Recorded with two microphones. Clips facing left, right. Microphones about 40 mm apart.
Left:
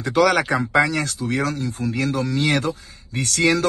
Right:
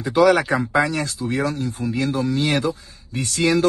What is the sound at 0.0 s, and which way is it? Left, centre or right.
Speech, left.